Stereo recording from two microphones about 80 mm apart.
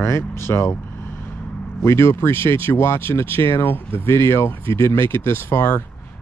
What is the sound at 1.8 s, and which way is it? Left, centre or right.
Speech, left.